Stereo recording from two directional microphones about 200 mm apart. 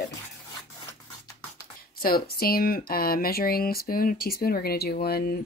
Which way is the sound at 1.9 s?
50° left (ahead or behind).